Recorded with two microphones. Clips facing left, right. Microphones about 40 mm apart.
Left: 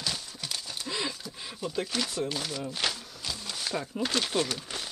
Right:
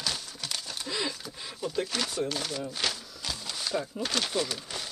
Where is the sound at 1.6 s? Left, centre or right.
Centre.